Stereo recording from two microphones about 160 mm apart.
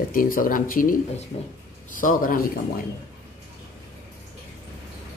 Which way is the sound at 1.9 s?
55° left (ahead or behind).